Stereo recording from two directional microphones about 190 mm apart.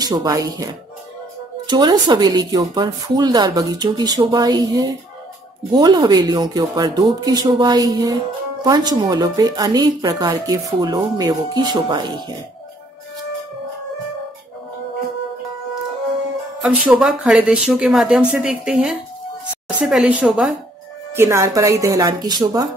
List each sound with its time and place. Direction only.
0.0 s a woman's voice: 20° right (ahead or behind)
1.7 s a woman's voice: 20° right (ahead or behind)
16.6 s speech: 5° right (ahead or behind)